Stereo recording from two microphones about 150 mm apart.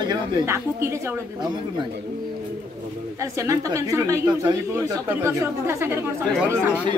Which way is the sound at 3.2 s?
20° right (ahead or behind).